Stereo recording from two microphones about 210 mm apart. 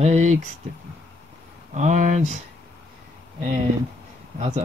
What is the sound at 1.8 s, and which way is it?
Speech, 35° right (ahead or behind).